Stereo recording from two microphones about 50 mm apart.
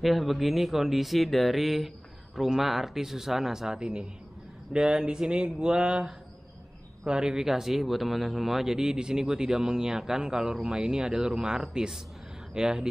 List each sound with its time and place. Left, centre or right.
0.0 s a man's voice: centre